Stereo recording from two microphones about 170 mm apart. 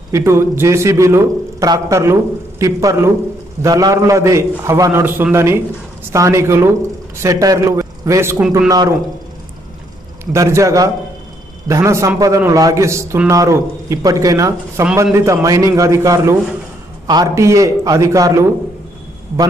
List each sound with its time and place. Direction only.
0.1 s a man's voice: 15° right (ahead or behind)
8.6 s a man's voice: 20° right (ahead or behind)
10.3 s a man's voice: 15° right (ahead or behind)